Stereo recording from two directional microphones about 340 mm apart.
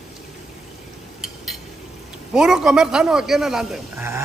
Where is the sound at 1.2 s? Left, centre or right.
Centre.